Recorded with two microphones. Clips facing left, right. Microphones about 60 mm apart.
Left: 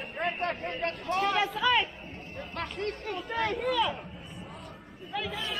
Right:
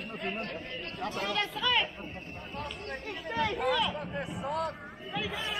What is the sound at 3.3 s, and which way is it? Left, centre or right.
Speech, centre.